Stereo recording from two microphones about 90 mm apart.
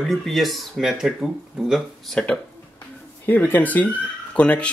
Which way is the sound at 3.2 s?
20° left (ahead or behind).